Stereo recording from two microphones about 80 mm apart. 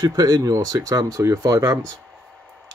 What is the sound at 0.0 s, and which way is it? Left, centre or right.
Speech, right.